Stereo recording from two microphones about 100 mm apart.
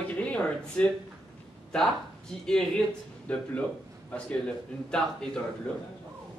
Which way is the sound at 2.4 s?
10° left (ahead or behind).